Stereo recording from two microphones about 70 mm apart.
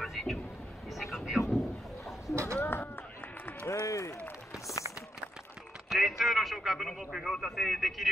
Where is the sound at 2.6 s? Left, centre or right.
Left.